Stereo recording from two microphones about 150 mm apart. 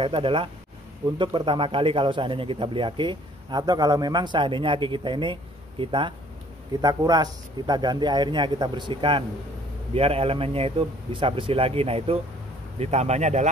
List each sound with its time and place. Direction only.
0.0 s speech: 35° right (ahead or behind); by 13.5 s 50° right (ahead or behind)